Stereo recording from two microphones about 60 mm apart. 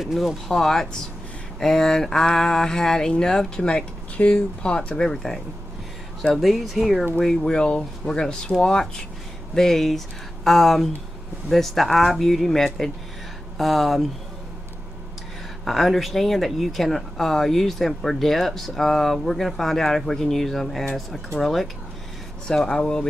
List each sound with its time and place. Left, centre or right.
0.0 s speech: centre
0.5 s speech: centre
7.2 s speech: centre
15.6 s speech: centre